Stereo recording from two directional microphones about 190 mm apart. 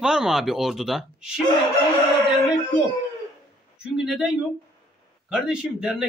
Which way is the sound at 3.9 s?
5° right (ahead or behind).